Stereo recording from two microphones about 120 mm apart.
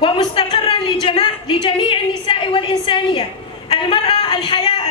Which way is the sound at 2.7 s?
40° left (ahead or behind).